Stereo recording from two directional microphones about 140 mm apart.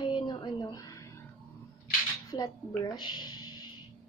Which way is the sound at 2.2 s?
25° left (ahead or behind).